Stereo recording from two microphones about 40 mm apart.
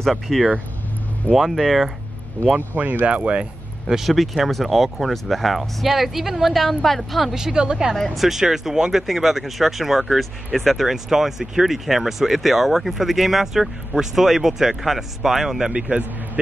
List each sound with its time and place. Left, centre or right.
0.1 s speech: centre
2.4 s speech: left
2.8 s speech: right
3.1 s speech: right
3.9 s speech: centre
7.3 s speech: centre
7.9 s speech: centre
9.0 s speech: centre